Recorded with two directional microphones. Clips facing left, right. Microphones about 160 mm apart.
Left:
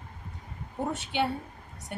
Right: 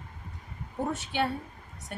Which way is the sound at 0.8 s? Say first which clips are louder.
Left 1 dB; 20° left (ahead or behind).